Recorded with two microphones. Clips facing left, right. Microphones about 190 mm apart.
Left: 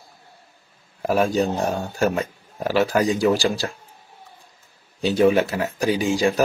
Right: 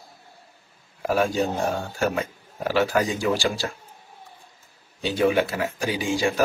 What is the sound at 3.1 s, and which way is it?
Speech, 40° left (ahead or behind).